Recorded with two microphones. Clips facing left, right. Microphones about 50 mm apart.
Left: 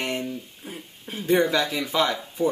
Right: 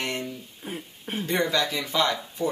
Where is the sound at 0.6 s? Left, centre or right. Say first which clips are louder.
Right 3 dB; centre.